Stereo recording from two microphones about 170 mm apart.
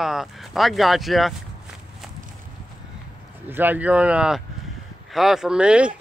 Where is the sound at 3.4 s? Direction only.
10° right (ahead or behind).